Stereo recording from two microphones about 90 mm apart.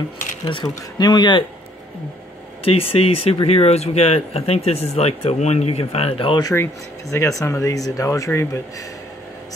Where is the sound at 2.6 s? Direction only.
90° left.